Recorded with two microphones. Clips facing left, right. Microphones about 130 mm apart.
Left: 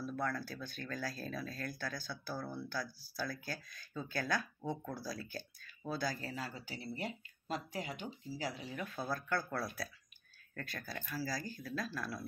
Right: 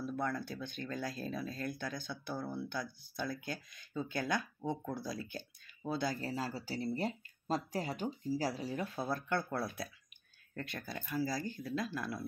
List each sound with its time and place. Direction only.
0.0 s speech: 20° right (ahead or behind)